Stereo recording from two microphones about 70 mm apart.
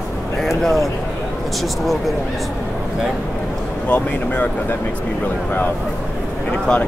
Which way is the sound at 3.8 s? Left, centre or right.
Left.